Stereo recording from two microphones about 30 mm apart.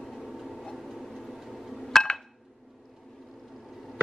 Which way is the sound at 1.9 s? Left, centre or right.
Left.